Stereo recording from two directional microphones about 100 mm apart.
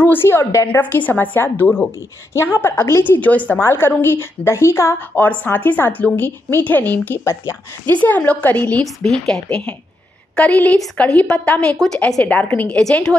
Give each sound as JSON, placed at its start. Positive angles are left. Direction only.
{"t": 0.0, "sound": "a woman's voice", "side_deg": 20}
{"t": 0.7, "sound": "a woman's voice", "side_deg": 15}